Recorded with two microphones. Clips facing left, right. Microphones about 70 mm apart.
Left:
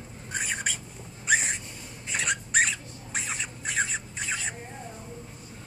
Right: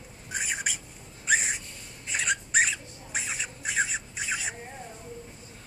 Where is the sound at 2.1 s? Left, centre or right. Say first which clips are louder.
Even; centre.